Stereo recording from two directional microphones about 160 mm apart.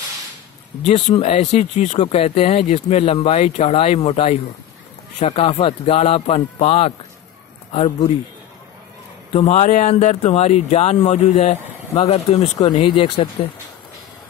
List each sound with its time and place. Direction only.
1.1 s speech: 35° left (ahead or behind)
9.3 s speech: 40° left (ahead or behind)